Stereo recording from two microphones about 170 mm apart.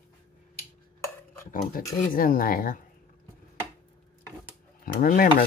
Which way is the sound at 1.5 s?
55° left (ahead or behind).